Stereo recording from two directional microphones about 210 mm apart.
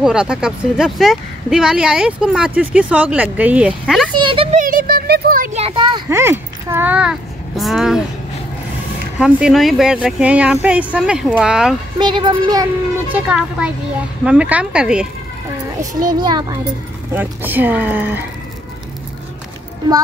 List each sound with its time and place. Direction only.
0.0 s speech: 5° right (ahead or behind)
4.2 s a sound: 25° right (ahead or behind); by 5.6 s 40° right (ahead or behind)
5.6 s a sound: 25° right (ahead or behind)
6.0 s speech: 10° right (ahead or behind)
9.2 s speech: centre (ahead or behind)
12.0 s speech: 20° right (ahead or behind)
13.1 s speech: 5° right (ahead or behind)
16.2 s speech: 20° right (ahead or behind)
17.1 s speech: 10° right (ahead or behind)